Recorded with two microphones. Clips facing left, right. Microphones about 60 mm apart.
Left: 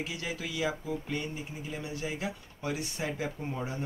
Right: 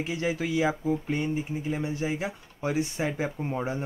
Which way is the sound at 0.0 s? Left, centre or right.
Right.